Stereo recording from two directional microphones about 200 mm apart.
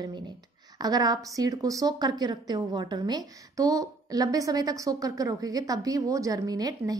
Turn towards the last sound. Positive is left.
turn(degrees=-20)  # may be behind; listen again after turning